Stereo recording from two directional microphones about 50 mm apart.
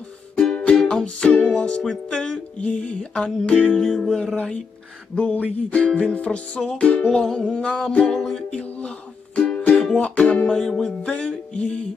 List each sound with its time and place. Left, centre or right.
0.4 s music: left
5.1 s music: left
7.1 s music: centre
8.5 s music: left
10.5 s music: centre
11.0 s music: left